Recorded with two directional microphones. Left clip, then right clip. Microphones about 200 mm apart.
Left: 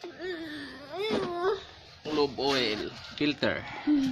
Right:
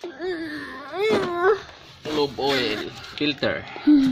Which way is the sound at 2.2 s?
35° left (ahead or behind).